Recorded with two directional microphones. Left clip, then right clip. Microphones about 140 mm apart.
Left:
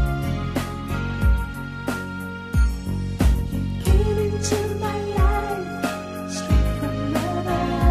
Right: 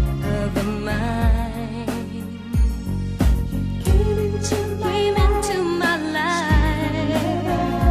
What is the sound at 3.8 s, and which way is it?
Music, 40° left (ahead or behind).